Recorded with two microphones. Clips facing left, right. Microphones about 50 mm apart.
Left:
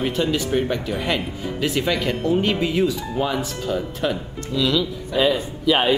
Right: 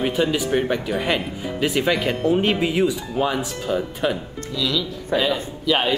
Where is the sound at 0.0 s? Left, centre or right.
Centre.